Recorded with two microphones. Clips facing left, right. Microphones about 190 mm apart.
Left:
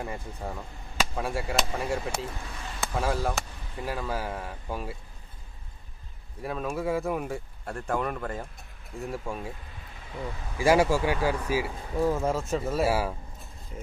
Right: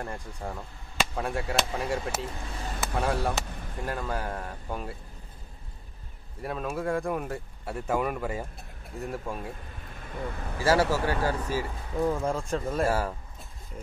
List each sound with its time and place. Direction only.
0.0 s speech: 5° left (ahead or behind)
2.8 s chop: centre (ahead or behind)
3.3 s speech: centre (ahead or behind)
6.4 s speech: centre (ahead or behind)
9.9 s speech: 50° right (ahead or behind)
10.6 s speech: 15° left (ahead or behind)